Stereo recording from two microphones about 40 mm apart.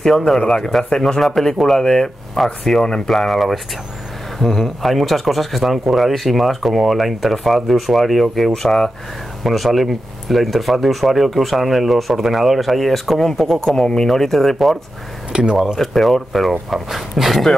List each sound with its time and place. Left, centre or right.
0.5 s speech: centre
0.8 s speech: centre
9.4 s speech: centre
13.7 s speech: centre
15.5 s speech: centre
15.8 s speech: centre